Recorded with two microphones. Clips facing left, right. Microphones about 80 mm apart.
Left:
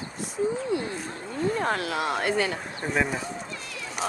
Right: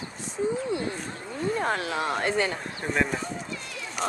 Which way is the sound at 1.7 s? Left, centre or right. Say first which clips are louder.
Left 1 dB; right.